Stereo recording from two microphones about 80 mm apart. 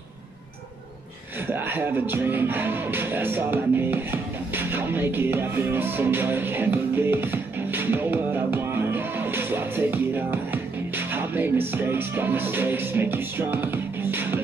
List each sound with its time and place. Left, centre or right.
1.5 s music: right